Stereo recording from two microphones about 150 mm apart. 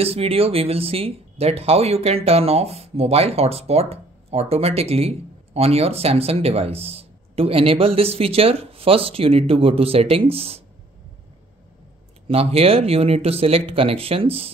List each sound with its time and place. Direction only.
0.0 s speech: 40° right (ahead or behind)
12.3 s speech: 40° right (ahead or behind)